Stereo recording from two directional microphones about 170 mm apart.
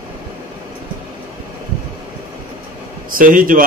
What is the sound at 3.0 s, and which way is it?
Speech, 55° right (ahead or behind).